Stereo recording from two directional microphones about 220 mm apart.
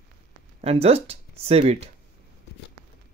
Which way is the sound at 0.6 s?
25° right (ahead or behind).